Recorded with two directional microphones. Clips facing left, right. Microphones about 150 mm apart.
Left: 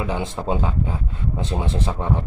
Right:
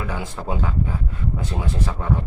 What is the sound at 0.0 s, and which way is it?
Speech, 20° left (ahead or behind).